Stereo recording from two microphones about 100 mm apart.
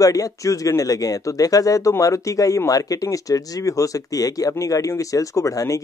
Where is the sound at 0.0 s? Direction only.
35° left (ahead or behind).